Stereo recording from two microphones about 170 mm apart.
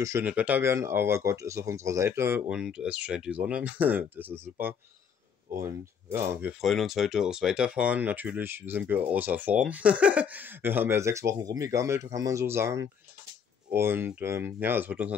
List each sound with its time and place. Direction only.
0.0 s speech: 15° right (ahead or behind)
6.6 s speech: centre (ahead or behind)